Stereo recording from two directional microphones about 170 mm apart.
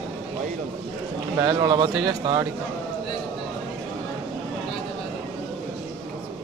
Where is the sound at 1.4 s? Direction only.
25° right (ahead or behind).